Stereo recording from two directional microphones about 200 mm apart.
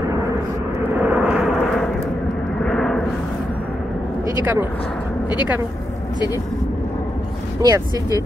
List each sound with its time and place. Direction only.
1.0 s vehicle: 5° right (ahead or behind)
2.6 s a sound: centre (ahead or behind)
7.6 s speech: 15° right (ahead or behind)